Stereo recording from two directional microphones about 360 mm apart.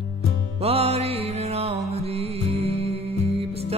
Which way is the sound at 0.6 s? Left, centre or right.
Centre.